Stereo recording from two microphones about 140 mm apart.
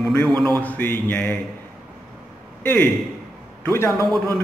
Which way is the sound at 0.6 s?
15° left (ahead or behind).